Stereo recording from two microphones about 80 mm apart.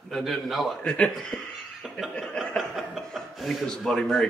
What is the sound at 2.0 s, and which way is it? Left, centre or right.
Chuckle, centre.